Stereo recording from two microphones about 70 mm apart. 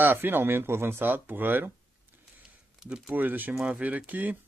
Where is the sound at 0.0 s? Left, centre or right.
Right.